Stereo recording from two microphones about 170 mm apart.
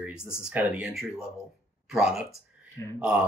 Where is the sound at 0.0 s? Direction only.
5° right (ahead or behind).